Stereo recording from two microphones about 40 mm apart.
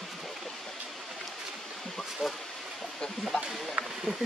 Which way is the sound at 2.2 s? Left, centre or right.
Centre.